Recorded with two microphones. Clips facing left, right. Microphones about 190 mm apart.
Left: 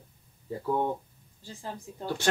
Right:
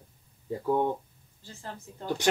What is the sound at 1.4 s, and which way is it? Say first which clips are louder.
Speech: left 3 dB; 15° left (ahead or behind).